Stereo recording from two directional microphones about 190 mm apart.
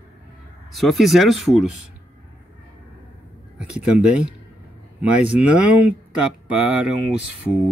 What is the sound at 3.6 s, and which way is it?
Speech, 5° right (ahead or behind).